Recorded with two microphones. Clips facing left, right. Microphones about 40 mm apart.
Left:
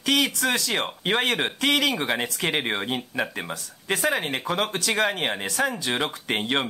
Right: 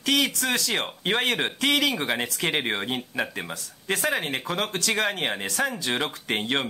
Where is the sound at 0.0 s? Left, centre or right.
Centre.